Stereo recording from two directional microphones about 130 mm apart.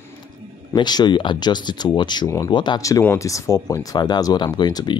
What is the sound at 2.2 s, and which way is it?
Speech, 25° left (ahead or behind).